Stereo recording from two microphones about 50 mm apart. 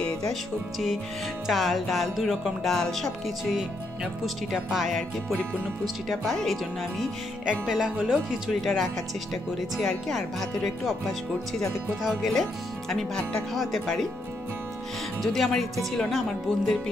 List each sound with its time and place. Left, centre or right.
0.3 s speech: centre
6.0 s speech: centre
7.6 s speech: centre
8.5 s speech: centre
12.0 s speech: centre
12.9 s speech: centre
13.6 s speech: centre
15.2 s speech: centre